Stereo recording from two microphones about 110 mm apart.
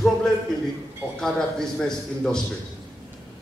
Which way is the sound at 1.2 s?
5° left (ahead or behind).